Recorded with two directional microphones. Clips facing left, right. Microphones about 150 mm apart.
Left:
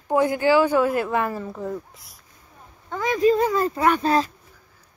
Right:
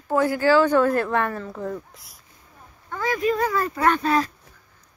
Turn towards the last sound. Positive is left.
turn(degrees=30)  # may be behind; listen again after turning